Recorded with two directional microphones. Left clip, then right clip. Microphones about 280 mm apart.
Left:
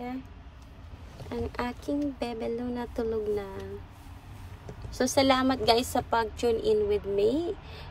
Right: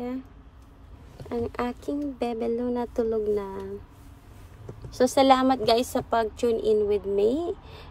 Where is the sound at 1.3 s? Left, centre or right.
Centre.